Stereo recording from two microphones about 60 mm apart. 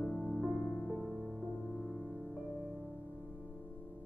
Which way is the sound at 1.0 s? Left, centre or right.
Centre.